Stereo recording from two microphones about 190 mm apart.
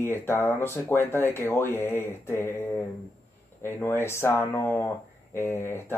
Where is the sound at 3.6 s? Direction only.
10° left (ahead or behind).